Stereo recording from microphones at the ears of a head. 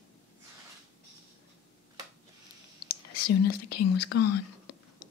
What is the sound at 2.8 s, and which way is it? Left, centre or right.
Whispering, left.